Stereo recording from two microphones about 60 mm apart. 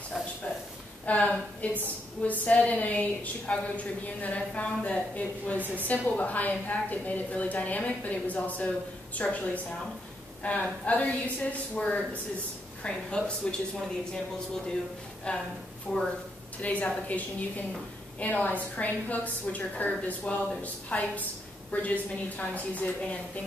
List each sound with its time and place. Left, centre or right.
1.0 s a woman's voice: left
15.9 s speech: centre
16.6 s a woman's voice: left